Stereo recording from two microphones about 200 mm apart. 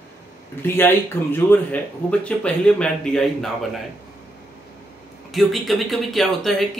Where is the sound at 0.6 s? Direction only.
10° left (ahead or behind).